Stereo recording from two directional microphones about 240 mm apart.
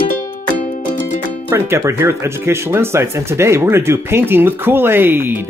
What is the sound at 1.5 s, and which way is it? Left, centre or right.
Speech, centre.